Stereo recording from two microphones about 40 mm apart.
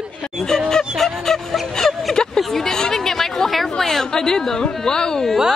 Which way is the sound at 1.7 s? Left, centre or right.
Centre.